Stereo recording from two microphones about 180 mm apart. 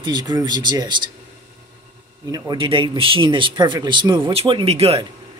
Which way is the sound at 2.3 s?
25° right (ahead or behind).